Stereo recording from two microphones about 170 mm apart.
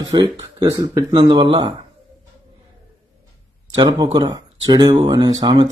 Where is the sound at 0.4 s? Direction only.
20° right (ahead or behind).